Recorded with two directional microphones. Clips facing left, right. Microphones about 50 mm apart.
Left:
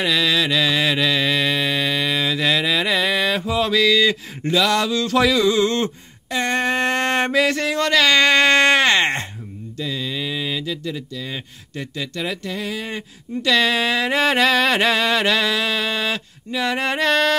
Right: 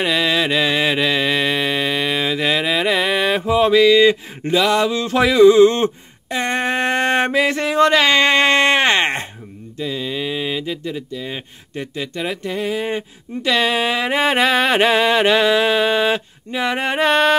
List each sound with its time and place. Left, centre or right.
0.0 s mantra: right
9.8 s speech: centre